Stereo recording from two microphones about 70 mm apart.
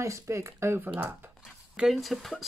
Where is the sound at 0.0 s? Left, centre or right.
Right.